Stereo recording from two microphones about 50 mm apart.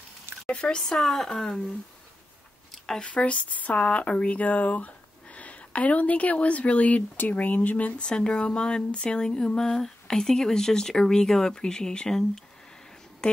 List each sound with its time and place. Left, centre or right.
0.5 s speech: centre
3.0 s speech: left